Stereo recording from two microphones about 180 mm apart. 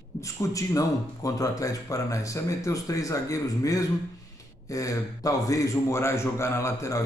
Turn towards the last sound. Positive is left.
turn(degrees=15)  # may be behind; listen again after turning